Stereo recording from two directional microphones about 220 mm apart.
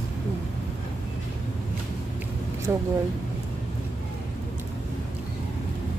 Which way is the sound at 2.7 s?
10° right (ahead or behind).